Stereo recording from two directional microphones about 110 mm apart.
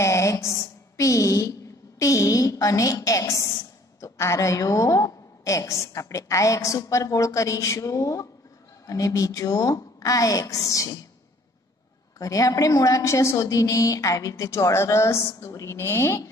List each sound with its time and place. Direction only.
0.0 s a woman's voice: 25° left (ahead or behind)
12.2 s a woman's voice: 30° left (ahead or behind)